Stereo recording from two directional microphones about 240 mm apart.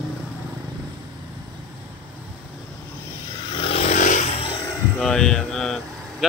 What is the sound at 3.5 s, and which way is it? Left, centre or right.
Vehicle, left.